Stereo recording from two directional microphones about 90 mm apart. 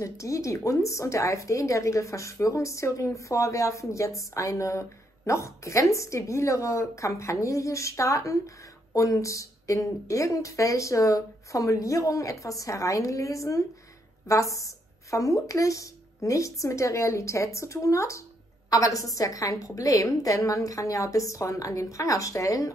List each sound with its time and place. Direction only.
0.0 s a woman's voice: 35° left (ahead or behind)